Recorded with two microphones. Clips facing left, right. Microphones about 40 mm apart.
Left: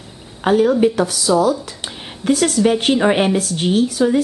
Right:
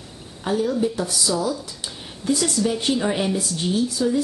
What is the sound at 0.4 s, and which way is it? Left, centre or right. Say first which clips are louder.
A woman's voice: left 8 dB; left.